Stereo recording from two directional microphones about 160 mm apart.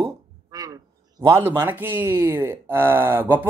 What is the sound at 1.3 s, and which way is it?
Speech, 20° right (ahead or behind).